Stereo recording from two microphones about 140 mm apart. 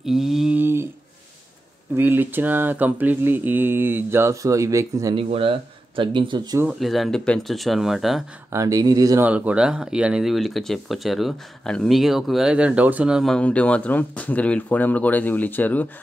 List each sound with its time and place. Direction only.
0.0 s mantra: 5° right (ahead or behind)
0.6 s a sound: 15° right (ahead or behind)
2.0 s mantra: 15° right (ahead or behind)
5.1 s speech: 40° right (ahead or behind)
6.8 s speech: centre (ahead or behind)
8.5 s speech: 25° right (ahead or behind)
9.2 s speech: 10° right (ahead or behind); by 15.9 s 10° left (ahead or behind)